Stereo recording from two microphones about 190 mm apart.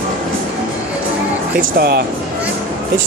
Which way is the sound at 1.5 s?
55° right (ahead or behind).